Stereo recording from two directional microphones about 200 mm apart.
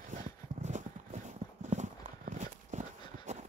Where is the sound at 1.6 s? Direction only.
35° right (ahead or behind).